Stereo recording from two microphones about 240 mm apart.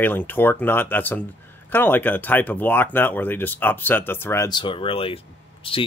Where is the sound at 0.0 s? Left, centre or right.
Centre.